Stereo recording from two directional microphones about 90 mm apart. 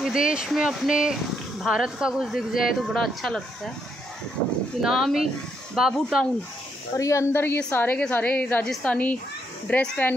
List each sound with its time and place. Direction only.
0.0 s speech: 10° right (ahead or behind)
4.8 s speech: 5° right (ahead or behind)
7.0 s a woman's voice: 35° left (ahead or behind)
7.3 s a woman's voice: 25° left (ahead or behind)